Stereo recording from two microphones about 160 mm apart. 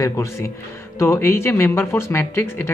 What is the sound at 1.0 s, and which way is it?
Music, 15° left (ahead or behind).